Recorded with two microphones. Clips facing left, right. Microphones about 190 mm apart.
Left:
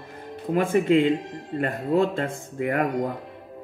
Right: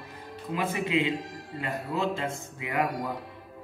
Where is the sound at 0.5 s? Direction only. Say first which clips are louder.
Left 8 dB; 50° left (ahead or behind).